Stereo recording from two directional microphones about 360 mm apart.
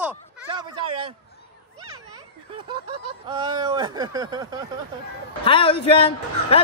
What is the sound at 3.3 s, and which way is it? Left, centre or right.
Speech, centre.